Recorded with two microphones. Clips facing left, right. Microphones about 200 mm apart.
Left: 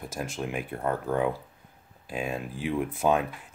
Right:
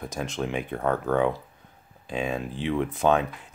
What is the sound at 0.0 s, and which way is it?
Speech, 5° left (ahead or behind).